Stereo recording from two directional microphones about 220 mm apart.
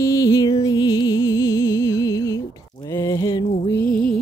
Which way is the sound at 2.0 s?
15° left (ahead or behind).